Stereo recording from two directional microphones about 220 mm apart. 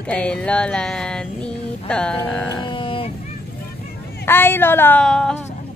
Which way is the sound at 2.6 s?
20° left (ahead or behind).